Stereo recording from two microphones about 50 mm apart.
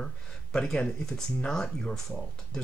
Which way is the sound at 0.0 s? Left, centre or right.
Centre.